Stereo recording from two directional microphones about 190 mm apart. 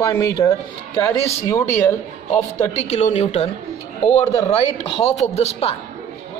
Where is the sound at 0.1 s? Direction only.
15° left (ahead or behind).